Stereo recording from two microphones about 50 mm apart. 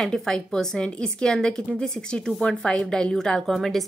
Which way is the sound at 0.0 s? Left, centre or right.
Centre.